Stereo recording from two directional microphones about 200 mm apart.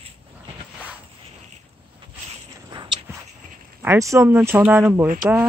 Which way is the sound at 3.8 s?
15° right (ahead or behind).